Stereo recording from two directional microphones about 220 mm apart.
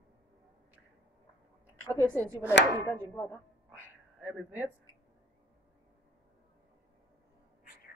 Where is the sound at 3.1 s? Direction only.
15° left (ahead or behind).